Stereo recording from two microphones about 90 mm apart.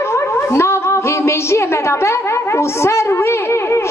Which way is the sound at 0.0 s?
30° left (ahead or behind).